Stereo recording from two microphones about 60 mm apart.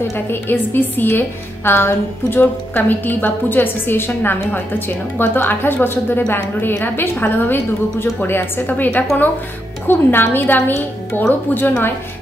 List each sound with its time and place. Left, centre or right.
0.1 s a woman's voice: left